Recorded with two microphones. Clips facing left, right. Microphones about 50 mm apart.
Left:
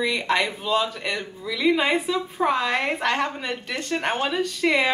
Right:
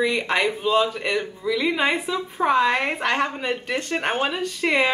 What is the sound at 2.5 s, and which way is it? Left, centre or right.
Speech, centre.